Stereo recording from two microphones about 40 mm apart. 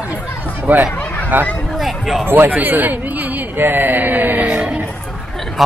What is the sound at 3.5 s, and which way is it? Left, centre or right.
Speech, right.